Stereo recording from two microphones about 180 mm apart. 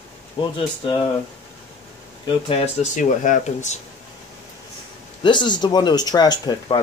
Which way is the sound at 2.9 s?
45° left (ahead or behind).